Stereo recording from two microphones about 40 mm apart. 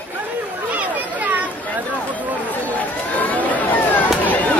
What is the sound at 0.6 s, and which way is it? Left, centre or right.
Chatter, right.